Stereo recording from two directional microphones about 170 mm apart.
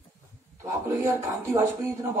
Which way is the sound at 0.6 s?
15° right (ahead or behind).